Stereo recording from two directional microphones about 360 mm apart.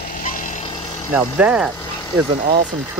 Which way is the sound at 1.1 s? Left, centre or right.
Centre.